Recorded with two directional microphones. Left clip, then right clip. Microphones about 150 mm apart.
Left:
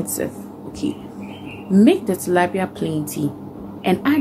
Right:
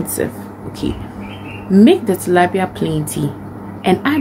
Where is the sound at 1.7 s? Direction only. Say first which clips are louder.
Right 4 dB; 15° right (ahead or behind).